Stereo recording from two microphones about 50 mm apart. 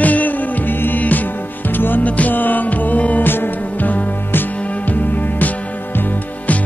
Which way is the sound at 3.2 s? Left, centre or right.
Left.